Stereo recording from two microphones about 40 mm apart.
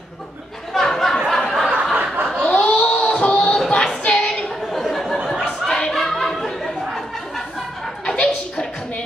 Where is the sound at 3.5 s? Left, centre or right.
Centre.